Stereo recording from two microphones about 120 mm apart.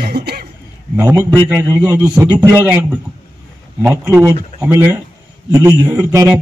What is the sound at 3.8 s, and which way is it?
A man's voice, 20° right (ahead or behind).